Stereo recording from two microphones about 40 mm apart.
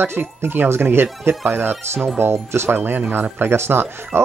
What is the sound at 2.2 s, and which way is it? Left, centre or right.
Speech, right.